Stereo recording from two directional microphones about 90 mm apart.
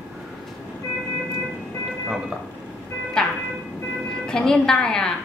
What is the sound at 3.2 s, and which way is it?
Music, 5° left (ahead or behind).